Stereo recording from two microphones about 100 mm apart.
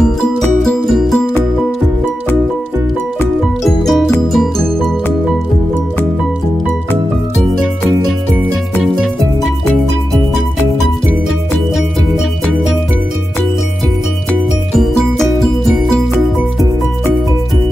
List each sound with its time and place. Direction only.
0.4 s music: centre (ahead or behind)
3.6 s music: 5° left (ahead or behind)
14.8 s music: 5° left (ahead or behind)